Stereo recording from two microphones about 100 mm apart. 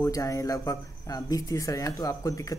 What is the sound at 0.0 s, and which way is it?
Speech, 35° left (ahead or behind).